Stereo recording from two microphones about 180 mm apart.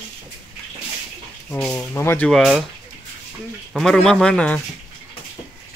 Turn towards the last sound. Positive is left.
turn(degrees=5)  # may be behind; listen again after turning